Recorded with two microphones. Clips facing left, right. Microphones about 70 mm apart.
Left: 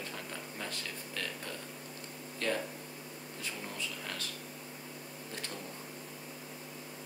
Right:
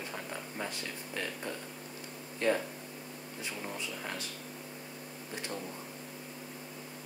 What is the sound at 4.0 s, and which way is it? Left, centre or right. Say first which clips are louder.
Speech: right 2 dB; centre.